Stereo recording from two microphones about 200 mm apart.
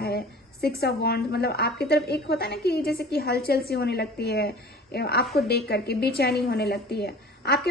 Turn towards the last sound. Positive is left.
turn(degrees=50)  # may be behind; listen again after turning